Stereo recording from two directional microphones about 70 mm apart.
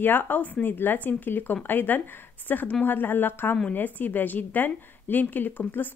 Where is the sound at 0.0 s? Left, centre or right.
Left.